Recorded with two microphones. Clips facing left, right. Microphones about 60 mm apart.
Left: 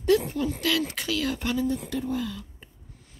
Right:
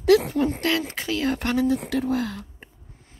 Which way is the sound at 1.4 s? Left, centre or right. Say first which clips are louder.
Right 5 dB; right.